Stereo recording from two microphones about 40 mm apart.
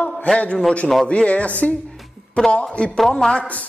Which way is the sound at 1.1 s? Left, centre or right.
Left.